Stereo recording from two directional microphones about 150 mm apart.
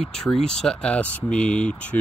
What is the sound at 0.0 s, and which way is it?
Speech, 5° left (ahead or behind).